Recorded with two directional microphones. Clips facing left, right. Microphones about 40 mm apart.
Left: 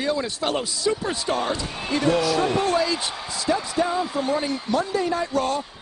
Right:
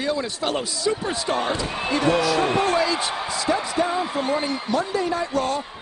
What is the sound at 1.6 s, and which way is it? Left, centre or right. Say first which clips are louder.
Speech: right 2 dB; right.